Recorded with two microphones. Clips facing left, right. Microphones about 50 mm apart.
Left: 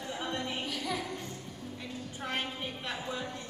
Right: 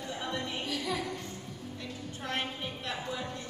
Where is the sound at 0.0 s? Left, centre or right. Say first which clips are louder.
Even; centre.